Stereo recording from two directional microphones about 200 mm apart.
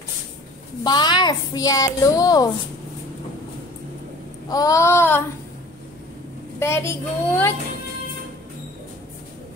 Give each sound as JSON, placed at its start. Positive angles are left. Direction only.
{"t": 0.8, "sound": "a child's voice", "side_deg": 20}
{"t": 4.5, "sound": "a woman's voice", "side_deg": 15}
{"t": 6.6, "sound": "a woman's voice", "side_deg": 10}